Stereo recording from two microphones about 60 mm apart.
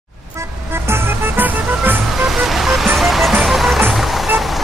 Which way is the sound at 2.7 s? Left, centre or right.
Centre.